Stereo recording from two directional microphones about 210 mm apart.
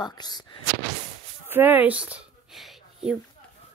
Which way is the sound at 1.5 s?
10° right (ahead or behind).